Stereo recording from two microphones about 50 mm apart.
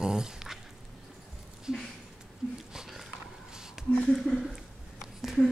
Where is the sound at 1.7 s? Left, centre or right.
Centre.